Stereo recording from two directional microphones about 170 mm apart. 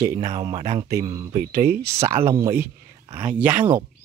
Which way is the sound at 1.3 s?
55° right (ahead or behind).